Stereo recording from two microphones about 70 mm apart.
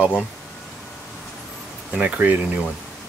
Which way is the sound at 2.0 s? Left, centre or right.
Right.